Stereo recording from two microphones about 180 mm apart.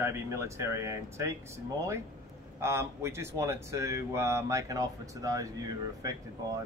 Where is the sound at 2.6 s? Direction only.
15° right (ahead or behind).